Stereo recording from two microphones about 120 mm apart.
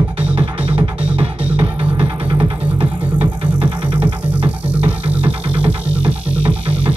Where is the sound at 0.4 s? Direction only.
50° right (ahead or behind).